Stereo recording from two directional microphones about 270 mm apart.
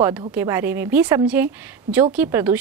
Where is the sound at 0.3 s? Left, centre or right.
Centre.